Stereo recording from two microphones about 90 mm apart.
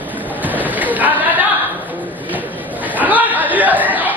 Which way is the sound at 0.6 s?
20° right (ahead or behind).